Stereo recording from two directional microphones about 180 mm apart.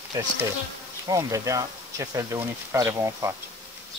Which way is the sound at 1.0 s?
20° right (ahead or behind).